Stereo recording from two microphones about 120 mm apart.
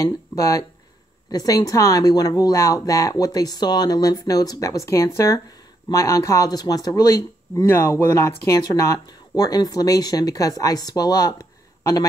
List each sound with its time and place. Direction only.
0.0 s speech: 25° left (ahead or behind)